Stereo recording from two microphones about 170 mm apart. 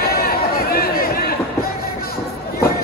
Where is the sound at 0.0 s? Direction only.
65° left (ahead or behind).